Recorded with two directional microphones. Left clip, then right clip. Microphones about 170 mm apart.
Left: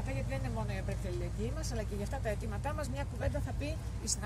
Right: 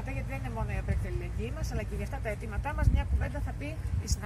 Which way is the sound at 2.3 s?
20° left (ahead or behind).